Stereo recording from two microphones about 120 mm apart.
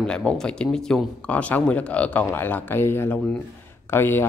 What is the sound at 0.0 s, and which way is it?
A man's voice, 5° left (ahead or behind).